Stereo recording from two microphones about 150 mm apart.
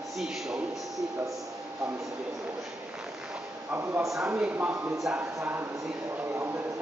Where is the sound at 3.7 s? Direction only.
15° right (ahead or behind).